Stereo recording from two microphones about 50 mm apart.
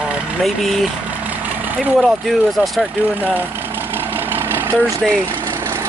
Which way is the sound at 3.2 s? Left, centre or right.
Right.